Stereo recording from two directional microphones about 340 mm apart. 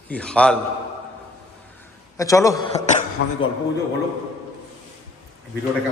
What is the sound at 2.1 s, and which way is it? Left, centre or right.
Speech, centre.